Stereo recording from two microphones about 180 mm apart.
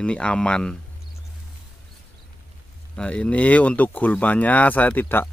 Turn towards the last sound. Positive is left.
turn(degrees=10)  # may be behind; listen again after turning